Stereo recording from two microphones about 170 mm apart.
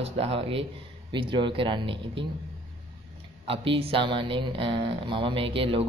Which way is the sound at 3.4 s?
30° right (ahead or behind).